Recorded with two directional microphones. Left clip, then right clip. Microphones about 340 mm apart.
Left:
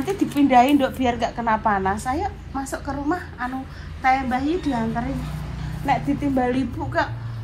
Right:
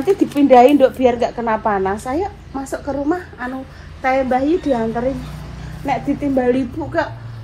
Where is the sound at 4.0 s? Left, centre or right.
Centre.